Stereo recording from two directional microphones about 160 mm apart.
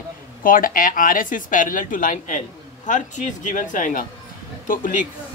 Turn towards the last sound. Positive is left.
turn(degrees=55)  # may be behind; listen again after turning